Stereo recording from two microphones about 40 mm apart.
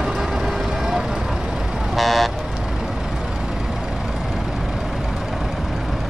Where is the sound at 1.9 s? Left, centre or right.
Centre.